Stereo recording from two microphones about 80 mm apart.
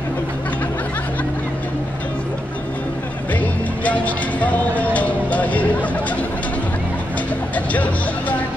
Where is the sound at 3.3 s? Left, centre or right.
Centre.